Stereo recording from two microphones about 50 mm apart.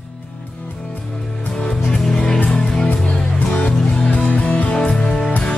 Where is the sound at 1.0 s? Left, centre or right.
Centre.